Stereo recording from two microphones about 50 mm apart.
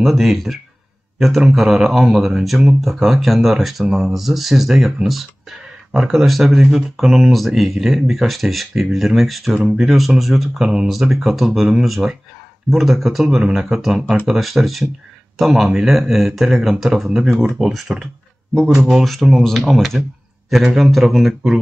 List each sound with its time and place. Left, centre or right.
0.0 s speech: centre
10.6 s speech: centre
10.9 s speech: centre
19.0 s speech: centre